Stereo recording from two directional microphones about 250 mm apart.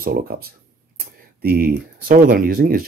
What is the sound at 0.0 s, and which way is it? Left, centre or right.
Speech, right.